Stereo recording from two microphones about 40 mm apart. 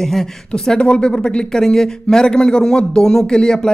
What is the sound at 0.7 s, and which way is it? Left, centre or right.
Speech, left.